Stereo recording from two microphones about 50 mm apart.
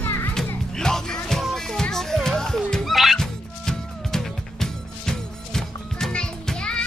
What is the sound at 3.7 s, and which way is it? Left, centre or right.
Music, centre.